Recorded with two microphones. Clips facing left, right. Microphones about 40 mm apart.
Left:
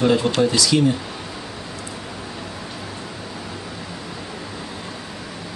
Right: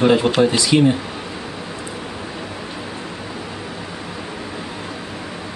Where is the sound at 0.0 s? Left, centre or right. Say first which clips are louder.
Right 3 dB; right.